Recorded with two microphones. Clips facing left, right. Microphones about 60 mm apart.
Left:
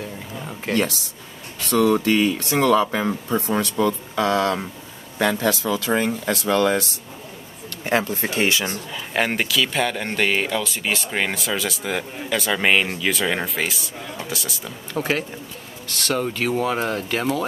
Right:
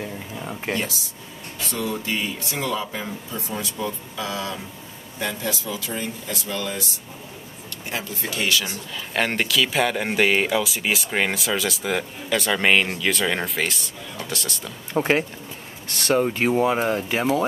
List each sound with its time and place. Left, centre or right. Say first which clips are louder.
0.4 s a sound: left 1 dB; centre
0.7 s speech: left 6 dB; left
5.2 s speech: left 7 dB; left
7.8 s speech: left 9 dB; left
8.1 s speech: left 3 dB; left
9.1 s speech: left 1 dB; centre
15.0 s speech: right 3 dB; right